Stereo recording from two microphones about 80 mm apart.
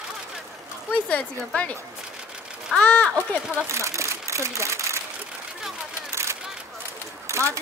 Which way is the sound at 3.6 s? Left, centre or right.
Right.